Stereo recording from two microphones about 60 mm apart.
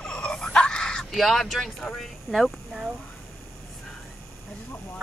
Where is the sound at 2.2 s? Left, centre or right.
Centre.